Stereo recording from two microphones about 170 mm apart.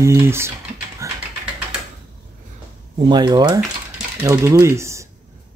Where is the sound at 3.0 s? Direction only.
25° right (ahead or behind).